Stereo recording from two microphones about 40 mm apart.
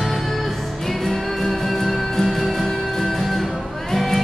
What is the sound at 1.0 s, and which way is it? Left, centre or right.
Music, centre.